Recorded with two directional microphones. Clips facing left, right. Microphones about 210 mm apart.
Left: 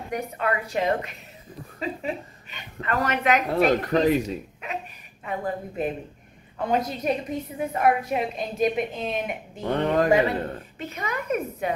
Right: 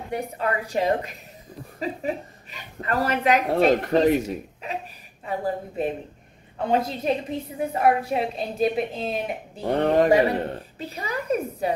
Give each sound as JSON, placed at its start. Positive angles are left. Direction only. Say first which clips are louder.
{"t": 0.1, "sound": "a woman's voice", "louder": "even", "side_deg": -35}
{"t": 2.5, "sound": "a woman's voice", "louder": "right 1 dB", "side_deg": -35}